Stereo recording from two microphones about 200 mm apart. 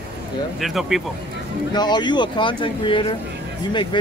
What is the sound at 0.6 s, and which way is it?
Speech, centre (ahead or behind).